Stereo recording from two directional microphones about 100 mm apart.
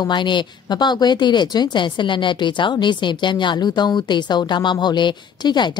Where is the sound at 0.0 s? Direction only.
50° left (ahead or behind).